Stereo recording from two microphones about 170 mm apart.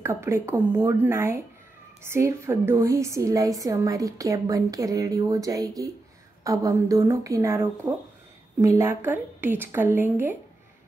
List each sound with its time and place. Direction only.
0.0 s a woman's voice: 15° right (ahead or behind)